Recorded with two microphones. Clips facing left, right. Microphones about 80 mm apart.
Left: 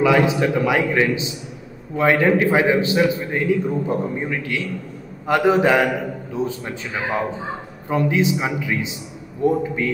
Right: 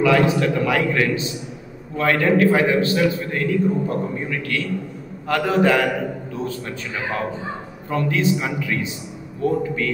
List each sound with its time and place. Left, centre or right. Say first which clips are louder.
0.0 s a man's voice: even; centre
7.9 s a man's voice: left 1 dB; centre